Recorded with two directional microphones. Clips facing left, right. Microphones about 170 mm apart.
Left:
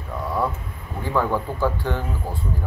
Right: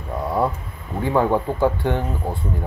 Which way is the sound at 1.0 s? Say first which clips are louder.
Right 4 dB; 20° right (ahead or behind).